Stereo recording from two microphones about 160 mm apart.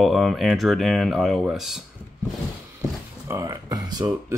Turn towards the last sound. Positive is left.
turn(degrees=-25)  # may be behind; listen again after turning